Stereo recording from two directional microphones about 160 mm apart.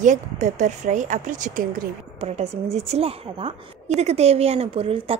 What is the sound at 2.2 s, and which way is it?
A woman's voice, 40° right (ahead or behind).